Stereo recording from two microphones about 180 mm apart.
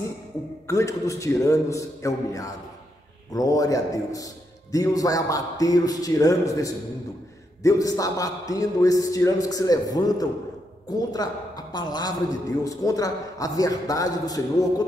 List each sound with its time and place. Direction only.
0.7 s a man's voice: 15° left (ahead or behind)